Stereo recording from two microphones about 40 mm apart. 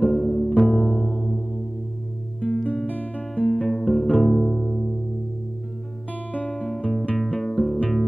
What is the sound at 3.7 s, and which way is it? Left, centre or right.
Music, centre.